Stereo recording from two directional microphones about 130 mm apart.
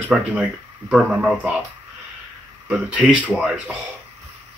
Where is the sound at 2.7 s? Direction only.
10° right (ahead or behind).